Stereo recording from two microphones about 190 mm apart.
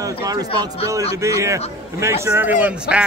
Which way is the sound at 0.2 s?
20° right (ahead or behind).